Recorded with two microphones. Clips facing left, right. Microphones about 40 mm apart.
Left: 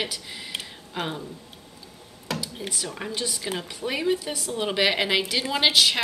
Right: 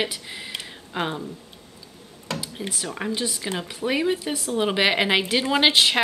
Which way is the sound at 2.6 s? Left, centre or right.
Centre.